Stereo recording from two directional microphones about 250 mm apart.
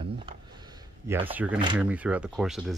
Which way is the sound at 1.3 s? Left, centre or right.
Centre.